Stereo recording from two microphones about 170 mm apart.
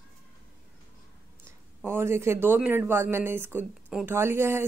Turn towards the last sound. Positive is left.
turn(degrees=-15)  # may be behind; listen again after turning